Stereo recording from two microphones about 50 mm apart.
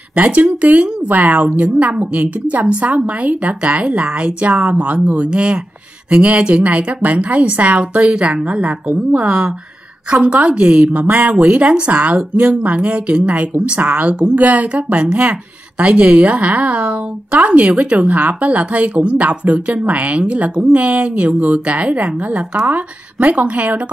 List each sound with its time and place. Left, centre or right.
0.1 s a woman's voice: right